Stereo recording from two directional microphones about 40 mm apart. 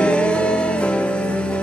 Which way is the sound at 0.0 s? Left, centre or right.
Left.